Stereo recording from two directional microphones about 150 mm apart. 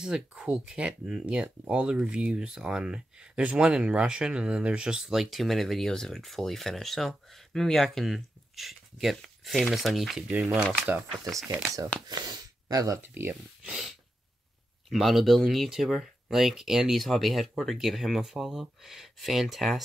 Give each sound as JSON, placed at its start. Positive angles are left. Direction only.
{"t": 0.0, "sound": "speech", "side_deg": -5}
{"t": 12.1, "sound": "speech", "side_deg": -30}